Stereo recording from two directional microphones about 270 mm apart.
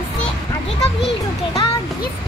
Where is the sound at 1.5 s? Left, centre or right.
Centre.